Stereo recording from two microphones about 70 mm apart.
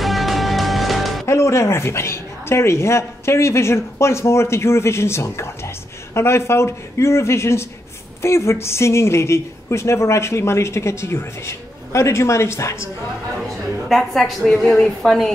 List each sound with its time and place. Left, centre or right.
0.0 s music: centre
1.2 s a woman's voice: left
13.8 s a woman's voice: centre